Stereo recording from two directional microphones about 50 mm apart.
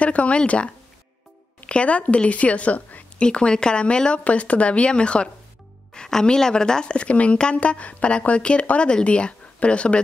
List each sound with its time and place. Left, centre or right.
0.0 s a woman's voice: left
3.3 s a woman's voice: centre